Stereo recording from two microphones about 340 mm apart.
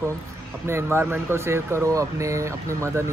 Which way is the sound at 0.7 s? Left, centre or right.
Centre.